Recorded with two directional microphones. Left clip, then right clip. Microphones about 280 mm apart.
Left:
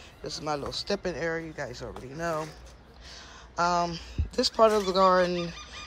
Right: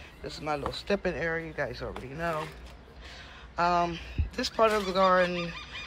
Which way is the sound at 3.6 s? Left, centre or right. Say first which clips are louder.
Even; centre.